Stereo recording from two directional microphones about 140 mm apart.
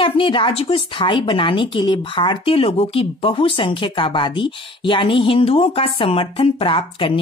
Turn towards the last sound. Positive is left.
turn(degrees=40)  # may be behind; listen again after turning